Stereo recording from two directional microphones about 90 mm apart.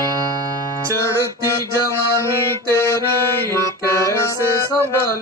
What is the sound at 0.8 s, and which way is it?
Music, 35° right (ahead or behind).